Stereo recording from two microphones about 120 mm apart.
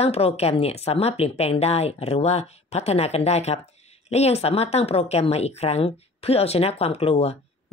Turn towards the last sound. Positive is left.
turn(degrees=55)  # may be behind; listen again after turning